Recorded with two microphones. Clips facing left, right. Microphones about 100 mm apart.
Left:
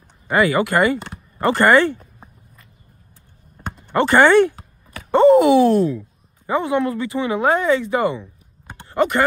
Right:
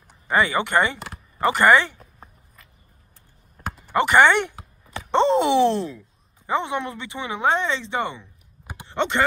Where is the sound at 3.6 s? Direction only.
5° right (ahead or behind).